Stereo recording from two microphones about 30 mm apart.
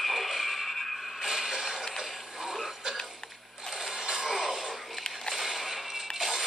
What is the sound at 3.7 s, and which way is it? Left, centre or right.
Sewing machine, left.